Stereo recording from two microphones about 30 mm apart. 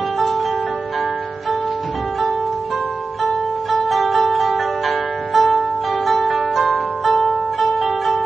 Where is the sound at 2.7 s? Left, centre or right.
Left.